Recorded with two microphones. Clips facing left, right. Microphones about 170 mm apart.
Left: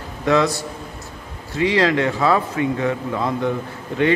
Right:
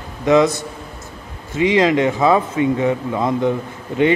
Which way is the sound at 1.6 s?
20° right (ahead or behind).